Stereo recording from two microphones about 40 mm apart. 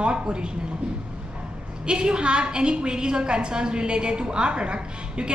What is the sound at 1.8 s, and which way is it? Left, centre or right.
A woman's voice, right.